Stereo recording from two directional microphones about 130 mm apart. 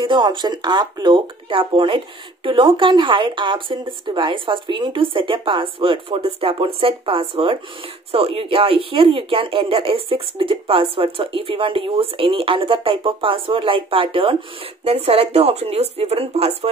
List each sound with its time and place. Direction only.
0.0 s speech: 35° right (ahead or behind)